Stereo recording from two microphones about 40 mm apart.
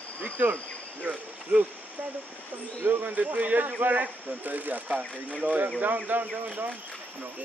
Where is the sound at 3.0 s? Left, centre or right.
Right.